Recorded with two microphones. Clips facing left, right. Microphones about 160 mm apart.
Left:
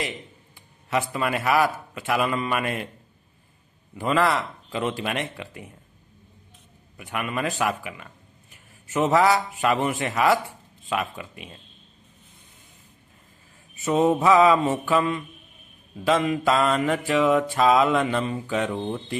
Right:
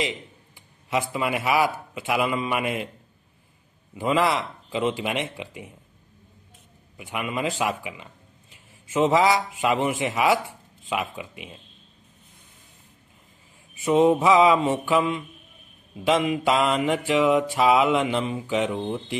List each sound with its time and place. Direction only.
0.6 s speech: 15° right (ahead or behind)
3.9 s mantra: 15° right (ahead or behind)
7.0 s mantra: 15° right (ahead or behind)
13.8 s mantra: 15° right (ahead or behind)